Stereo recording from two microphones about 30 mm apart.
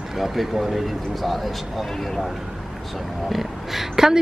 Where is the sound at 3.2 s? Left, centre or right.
Centre.